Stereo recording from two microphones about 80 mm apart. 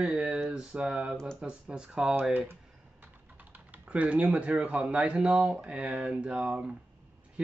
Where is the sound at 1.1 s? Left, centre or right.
Centre.